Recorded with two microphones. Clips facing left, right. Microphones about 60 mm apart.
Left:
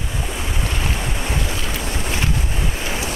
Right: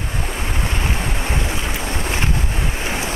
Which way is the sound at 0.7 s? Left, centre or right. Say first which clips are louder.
Right 1 dB; centre.